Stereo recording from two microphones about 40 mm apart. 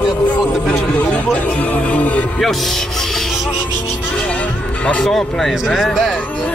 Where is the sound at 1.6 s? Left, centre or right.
Left.